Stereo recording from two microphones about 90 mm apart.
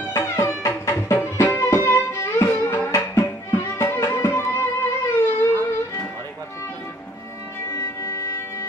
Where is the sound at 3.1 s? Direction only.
30° left (ahead or behind).